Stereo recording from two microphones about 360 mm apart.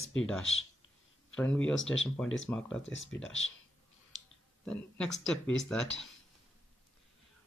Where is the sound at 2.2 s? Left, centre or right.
Left.